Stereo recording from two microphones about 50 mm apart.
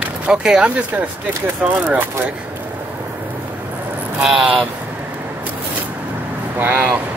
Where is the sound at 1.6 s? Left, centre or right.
Right.